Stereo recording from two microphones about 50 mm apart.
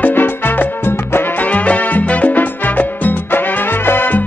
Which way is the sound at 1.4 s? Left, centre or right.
Left.